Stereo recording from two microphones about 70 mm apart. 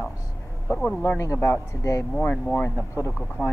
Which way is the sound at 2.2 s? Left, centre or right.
Left.